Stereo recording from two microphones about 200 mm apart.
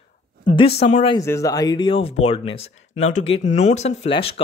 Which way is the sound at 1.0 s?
15° left (ahead or behind).